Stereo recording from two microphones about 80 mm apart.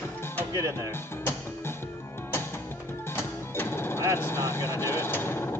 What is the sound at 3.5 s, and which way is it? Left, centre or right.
Music, left.